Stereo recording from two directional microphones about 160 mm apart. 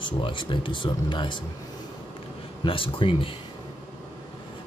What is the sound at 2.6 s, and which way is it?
Speech, 35° left (ahead or behind).